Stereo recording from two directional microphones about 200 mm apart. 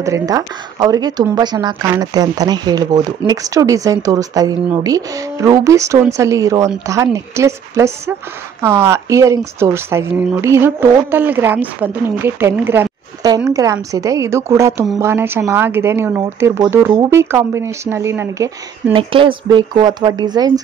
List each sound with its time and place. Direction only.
0.0 s speech: 15° right (ahead or behind)
18.9 s speech: 25° right (ahead or behind)